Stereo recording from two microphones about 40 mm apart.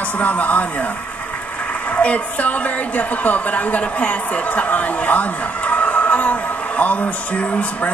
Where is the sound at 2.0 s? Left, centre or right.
Left.